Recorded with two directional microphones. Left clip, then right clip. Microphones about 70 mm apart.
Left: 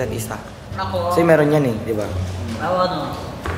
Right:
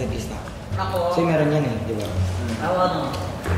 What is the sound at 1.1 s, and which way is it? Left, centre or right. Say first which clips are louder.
Speech: left 9 dB; left.